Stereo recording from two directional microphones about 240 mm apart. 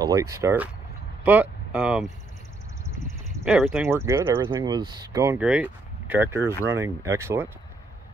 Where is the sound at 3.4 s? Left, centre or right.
Centre.